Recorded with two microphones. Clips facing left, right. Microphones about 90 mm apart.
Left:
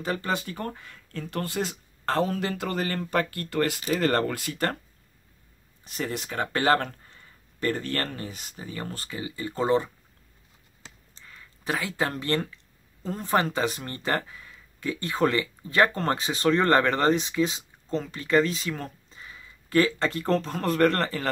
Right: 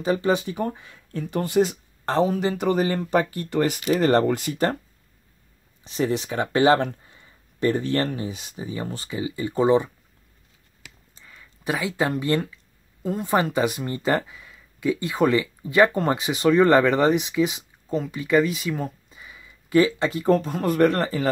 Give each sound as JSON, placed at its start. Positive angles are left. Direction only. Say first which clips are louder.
{"t": 0.0, "sound": "speech", "louder": "right 7 dB", "side_deg": -15}
{"t": 5.9, "sound": "speech", "louder": "right 8 dB", "side_deg": -20}
{"t": 11.1, "sound": "a sound", "louder": "even", "side_deg": -10}
{"t": 13.0, "sound": "speech", "louder": "right 3 dB", "side_deg": -5}